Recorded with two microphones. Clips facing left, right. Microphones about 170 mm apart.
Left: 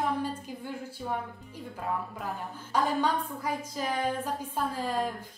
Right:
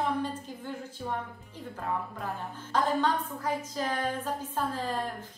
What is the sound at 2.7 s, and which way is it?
A woman's voice, 10° left (ahead or behind).